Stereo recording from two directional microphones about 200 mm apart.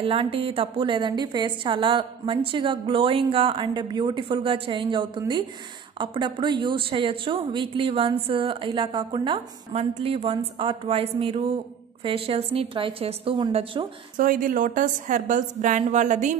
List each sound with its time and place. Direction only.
0.0 s speech: 25° right (ahead or behind)
14.1 s a woman's voice: 45° right (ahead or behind)